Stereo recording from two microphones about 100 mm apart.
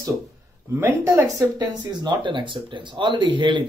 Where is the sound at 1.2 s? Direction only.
40° right (ahead or behind).